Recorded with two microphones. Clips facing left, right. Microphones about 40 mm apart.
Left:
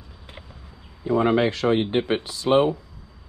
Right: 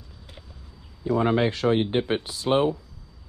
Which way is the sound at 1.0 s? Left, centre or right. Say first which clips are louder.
Left 2 dB; left.